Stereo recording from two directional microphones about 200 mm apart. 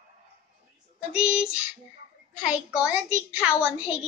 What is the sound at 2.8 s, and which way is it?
A woman's voice, 5° right (ahead or behind).